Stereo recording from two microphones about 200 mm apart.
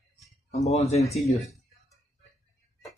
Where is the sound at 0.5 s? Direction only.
35° left (ahead or behind).